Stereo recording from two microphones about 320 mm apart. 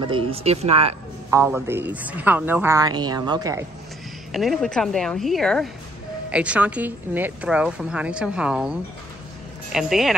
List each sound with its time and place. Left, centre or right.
0.0 s speech: centre
1.4 s a woman's voice: centre
4.3 s a woman's voice: centre